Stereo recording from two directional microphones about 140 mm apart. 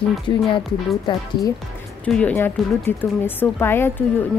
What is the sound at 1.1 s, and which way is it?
Speech, 35° left (ahead or behind).